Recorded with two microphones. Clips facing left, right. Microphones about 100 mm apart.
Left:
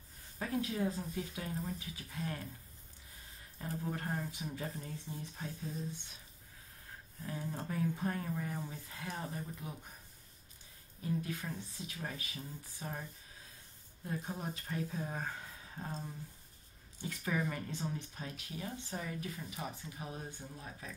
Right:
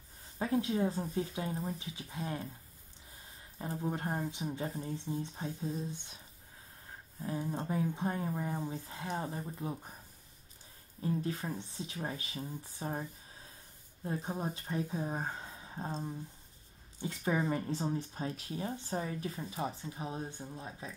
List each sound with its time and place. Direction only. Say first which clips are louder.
0.4 s speech: right 4 dB; 25° right (ahead or behind)
3.5 s speech: right 3 dB; 25° right (ahead or behind)
7.2 s speech: right 5 dB; 20° right (ahead or behind)
11.0 s speech: right 3 dB; 30° right (ahead or behind)
14.0 s speech: right 4 dB; 30° right (ahead or behind)